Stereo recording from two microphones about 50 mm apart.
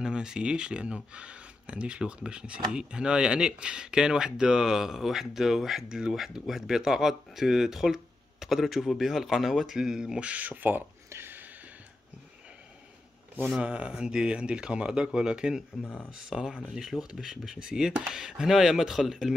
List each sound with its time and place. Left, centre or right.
0.0 s speech: centre
10.2 s speech: right
11.1 s a sound: right
13.6 s speech: right
16.3 s speech: centre